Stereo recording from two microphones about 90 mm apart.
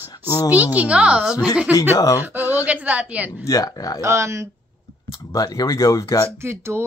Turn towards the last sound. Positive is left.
turn(degrees=-30)  # may be behind; listen again after turning